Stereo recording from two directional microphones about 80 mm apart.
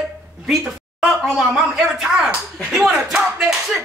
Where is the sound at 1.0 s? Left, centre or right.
Centre.